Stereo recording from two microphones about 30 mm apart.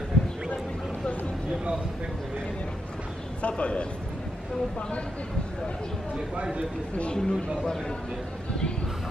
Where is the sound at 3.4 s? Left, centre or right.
Left.